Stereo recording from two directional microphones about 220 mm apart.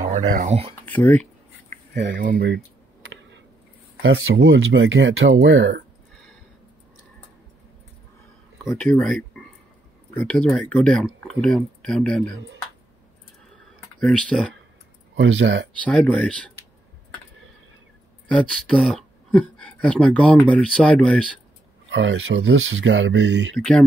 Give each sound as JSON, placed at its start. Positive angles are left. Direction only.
{"t": 0.0, "sound": "speech", "side_deg": -35}
{"t": 0.8, "sound": "speech", "side_deg": 10}
{"t": 2.0, "sound": "speech", "side_deg": -50}
{"t": 2.2, "sound": "a sound", "side_deg": -45}
{"t": 4.0, "sound": "speech", "side_deg": -60}
{"t": 8.6, "sound": "speech", "side_deg": 5}
{"t": 13.9, "sound": "speech", "side_deg": 5}
{"t": 15.1, "sound": "speech", "side_deg": -60}
{"t": 15.8, "sound": "speech", "side_deg": 5}
{"t": 18.3, "sound": "speech", "side_deg": 0}
{"t": 21.9, "sound": "speech", "side_deg": -55}
{"t": 23.5, "sound": "speech", "side_deg": 5}